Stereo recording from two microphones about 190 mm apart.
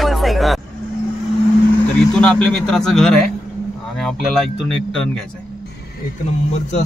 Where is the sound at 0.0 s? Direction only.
Centre (ahead or behind).